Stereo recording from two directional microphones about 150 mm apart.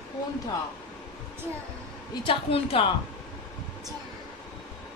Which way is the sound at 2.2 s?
35° left (ahead or behind).